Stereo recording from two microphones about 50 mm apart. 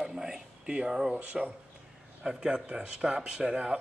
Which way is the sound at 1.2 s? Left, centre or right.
Right.